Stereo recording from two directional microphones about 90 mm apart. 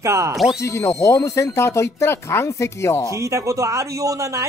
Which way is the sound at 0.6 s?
35° left (ahead or behind).